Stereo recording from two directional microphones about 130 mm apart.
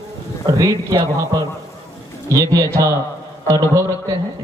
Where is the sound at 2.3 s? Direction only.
30° right (ahead or behind).